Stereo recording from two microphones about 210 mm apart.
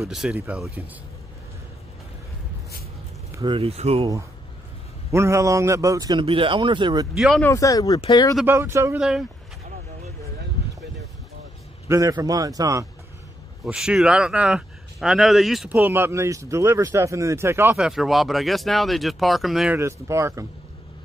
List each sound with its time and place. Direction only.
0.0 s speech: centre (ahead or behind)
3.3 s a sound: 15° right (ahead or behind)
3.5 s speech: 30° right (ahead or behind)
5.1 s a man's voice: 15° right (ahead or behind)
7.2 s speech: centre (ahead or behind)
7.4 s speech: 15° left (ahead or behind)
8.4 s a man's voice: 10° right (ahead or behind)
11.9 s a man's voice: 15° right (ahead or behind)
13.7 s speech: 5° right (ahead or behind)
19.8 s a man's voice: 15° right (ahead or behind)